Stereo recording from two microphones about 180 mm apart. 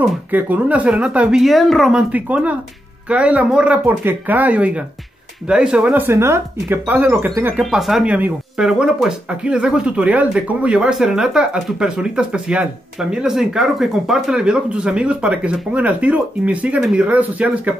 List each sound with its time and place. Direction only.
0.0 s speech: 10° right (ahead or behind)